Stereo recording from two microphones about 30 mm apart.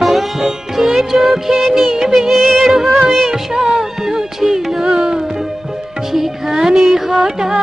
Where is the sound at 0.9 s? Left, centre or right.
Centre.